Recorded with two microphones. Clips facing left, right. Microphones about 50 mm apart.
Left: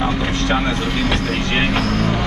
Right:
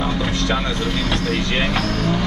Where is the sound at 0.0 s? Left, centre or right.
Left.